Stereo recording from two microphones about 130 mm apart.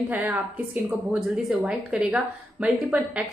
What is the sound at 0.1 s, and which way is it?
A woman's voice, 15° right (ahead or behind).